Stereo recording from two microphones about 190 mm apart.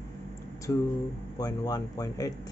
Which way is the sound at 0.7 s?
15° left (ahead or behind).